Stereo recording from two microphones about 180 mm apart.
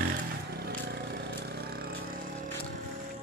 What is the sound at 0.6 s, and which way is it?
Vehicle, 60° right (ahead or behind).